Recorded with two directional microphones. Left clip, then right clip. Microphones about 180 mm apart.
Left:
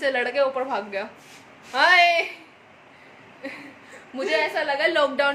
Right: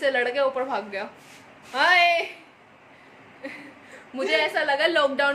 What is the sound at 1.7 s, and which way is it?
Speech, 20° left (ahead or behind).